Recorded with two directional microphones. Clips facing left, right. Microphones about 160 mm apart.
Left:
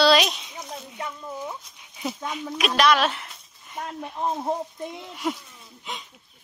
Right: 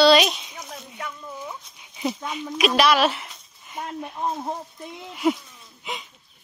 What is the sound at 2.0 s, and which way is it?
Speech, centre (ahead or behind).